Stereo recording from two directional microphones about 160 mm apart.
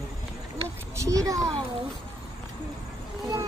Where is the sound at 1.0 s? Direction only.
20° right (ahead or behind).